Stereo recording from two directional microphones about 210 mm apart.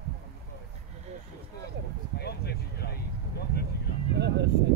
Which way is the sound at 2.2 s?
50° left (ahead or behind).